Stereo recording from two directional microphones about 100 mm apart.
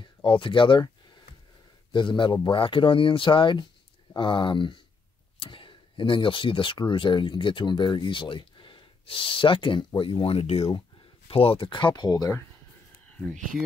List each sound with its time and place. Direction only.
0.0 s speech: 55° left (ahead or behind)
1.9 s a man's voice: 55° left (ahead or behind); by 10.7 s 85° left
11.2 s speech: 70° left (ahead or behind); by 12.4 s 40° left (ahead or behind)